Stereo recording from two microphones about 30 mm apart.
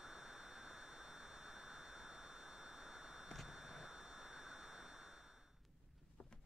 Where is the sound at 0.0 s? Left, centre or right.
Centre.